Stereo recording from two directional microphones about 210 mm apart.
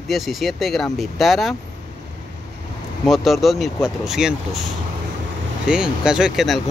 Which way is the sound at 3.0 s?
Centre (ahead or behind).